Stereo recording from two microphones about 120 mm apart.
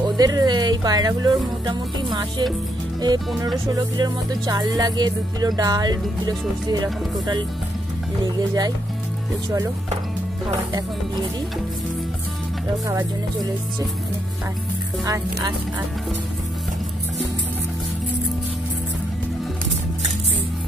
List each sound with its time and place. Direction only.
0.2 s speech: 35° right (ahead or behind)
8.4 s speech: 35° right (ahead or behind)